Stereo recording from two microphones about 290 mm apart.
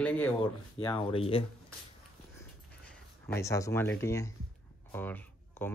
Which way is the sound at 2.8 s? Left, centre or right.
Centre.